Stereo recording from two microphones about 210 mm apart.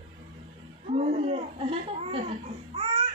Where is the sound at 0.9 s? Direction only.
30° right (ahead or behind).